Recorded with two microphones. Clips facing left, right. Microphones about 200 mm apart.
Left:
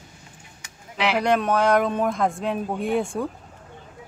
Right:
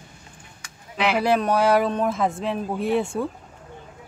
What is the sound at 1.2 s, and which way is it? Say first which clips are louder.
Speech: even; centre (ahead or behind).